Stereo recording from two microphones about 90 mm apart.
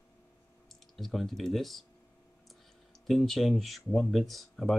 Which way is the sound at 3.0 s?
5° left (ahead or behind).